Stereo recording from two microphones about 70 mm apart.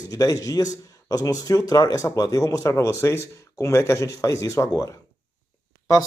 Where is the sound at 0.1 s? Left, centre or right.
Left.